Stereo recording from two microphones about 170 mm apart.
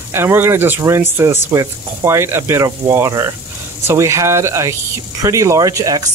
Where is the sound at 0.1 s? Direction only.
15° right (ahead or behind).